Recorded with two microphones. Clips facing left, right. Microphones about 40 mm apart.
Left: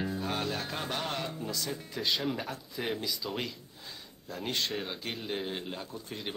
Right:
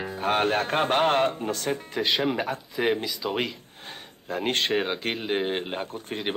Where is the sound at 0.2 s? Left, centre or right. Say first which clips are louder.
Right 10 dB; right.